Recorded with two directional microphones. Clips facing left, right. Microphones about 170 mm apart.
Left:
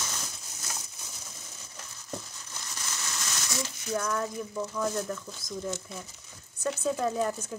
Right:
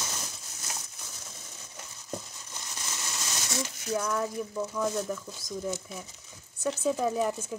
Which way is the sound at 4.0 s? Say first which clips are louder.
Right 1 dB; 5° right (ahead or behind).